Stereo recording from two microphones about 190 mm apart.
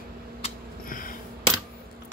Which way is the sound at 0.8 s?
45° left (ahead or behind).